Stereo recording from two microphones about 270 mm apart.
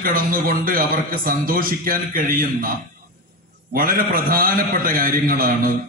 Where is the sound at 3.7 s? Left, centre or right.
Right.